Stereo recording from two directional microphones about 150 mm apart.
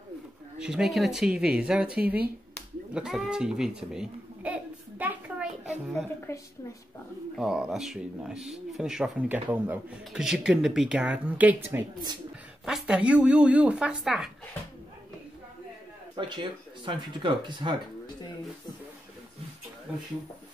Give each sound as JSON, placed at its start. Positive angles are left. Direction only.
{"t": 0.6, "sound": "speech", "side_deg": -5}
{"t": 2.9, "sound": "a sound", "side_deg": -5}
{"t": 6.3, "sound": "a woman's voice", "side_deg": 20}
{"t": 7.3, "sound": "speech", "side_deg": -5}
{"t": 16.2, "sound": "speech", "side_deg": -30}
{"t": 19.9, "sound": "speech", "side_deg": -5}